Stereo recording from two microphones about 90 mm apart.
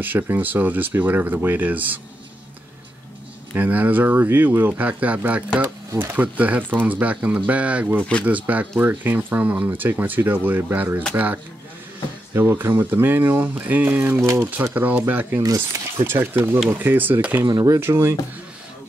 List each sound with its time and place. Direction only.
0.0 s speech: 20° right (ahead or behind)
3.5 s speech: 15° right (ahead or behind)
12.4 s speech: 25° right (ahead or behind)
17.5 s speech: 50° right (ahead or behind)
17.7 s speech: 25° right (ahead or behind)